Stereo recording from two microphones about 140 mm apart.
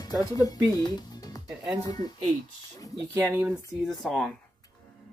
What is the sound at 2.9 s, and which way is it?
Speech, 15° right (ahead or behind).